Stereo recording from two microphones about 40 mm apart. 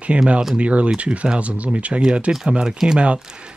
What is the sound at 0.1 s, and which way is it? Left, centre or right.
Speech, right.